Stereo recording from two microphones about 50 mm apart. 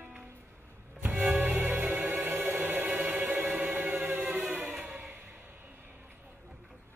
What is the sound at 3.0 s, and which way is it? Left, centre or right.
Music, right.